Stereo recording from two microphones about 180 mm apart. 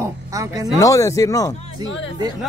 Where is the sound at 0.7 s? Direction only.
20° left (ahead or behind).